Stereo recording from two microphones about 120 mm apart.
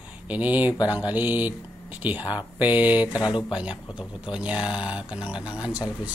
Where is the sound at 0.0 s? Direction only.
15° right (ahead or behind).